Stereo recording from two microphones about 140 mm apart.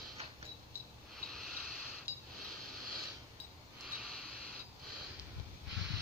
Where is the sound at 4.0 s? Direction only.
Centre (ahead or behind).